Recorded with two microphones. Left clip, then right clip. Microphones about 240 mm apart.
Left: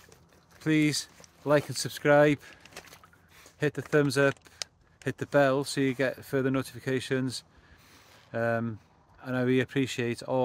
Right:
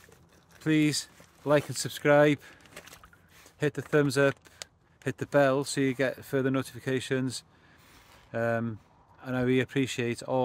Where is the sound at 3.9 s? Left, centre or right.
Centre.